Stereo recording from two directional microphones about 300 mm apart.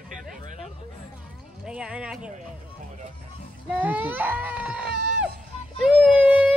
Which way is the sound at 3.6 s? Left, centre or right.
Centre.